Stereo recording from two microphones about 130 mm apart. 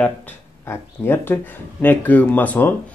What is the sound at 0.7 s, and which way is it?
Speech, 20° left (ahead or behind).